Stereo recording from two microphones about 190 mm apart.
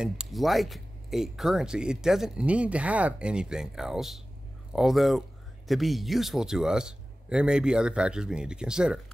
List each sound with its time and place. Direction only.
0.0 s speech: centre (ahead or behind)